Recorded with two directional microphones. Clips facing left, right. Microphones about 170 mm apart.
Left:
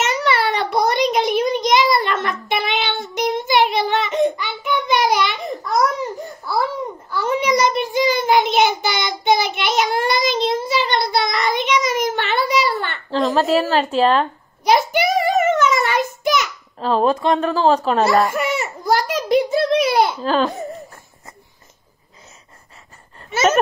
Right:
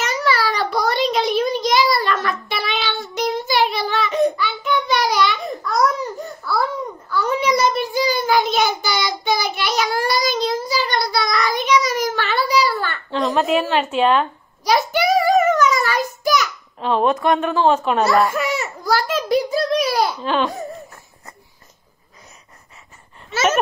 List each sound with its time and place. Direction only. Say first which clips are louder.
0.0 s a sound: left 1 dB; 25° left (ahead or behind)
2.7 s child singing: left 2 dB; 20° left (ahead or behind)
13.1 s a woman's voice: left 2 dB; 30° left (ahead or behind)
14.7 s child singing: left 1 dB; 20° left (ahead or behind)
16.8 s a woman's voice: left 1 dB; 35° left (ahead or behind)
18.0 s speech: even; centre (ahead or behind)
18.3 s a sound: left 1 dB; 15° left (ahead or behind)
20.2 s a woman's voice: left 2 dB; 35° left (ahead or behind)